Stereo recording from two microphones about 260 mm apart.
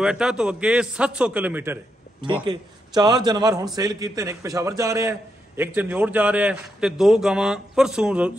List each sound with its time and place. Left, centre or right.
0.0 s a man's voice: centre